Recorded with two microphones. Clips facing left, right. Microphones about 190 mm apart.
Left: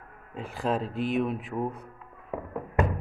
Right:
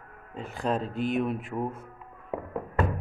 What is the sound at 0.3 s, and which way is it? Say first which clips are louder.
Speech: even; centre (ahead or behind).